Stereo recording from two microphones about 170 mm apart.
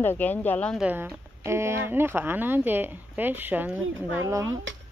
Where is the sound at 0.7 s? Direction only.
10° right (ahead or behind).